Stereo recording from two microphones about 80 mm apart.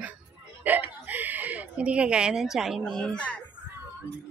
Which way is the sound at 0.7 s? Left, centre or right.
Right.